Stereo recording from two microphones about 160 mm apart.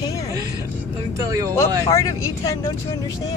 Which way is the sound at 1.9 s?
20° left (ahead or behind).